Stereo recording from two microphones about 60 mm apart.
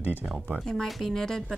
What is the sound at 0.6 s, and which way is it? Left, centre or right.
Speech, centre.